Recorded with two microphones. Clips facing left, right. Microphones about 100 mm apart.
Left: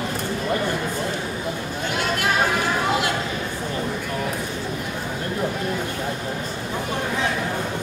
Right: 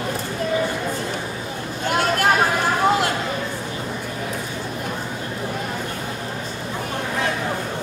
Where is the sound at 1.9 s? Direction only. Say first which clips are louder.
Right 5 dB; 45° right (ahead or behind).